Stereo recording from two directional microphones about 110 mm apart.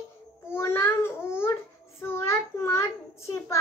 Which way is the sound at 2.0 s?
25° left (ahead or behind).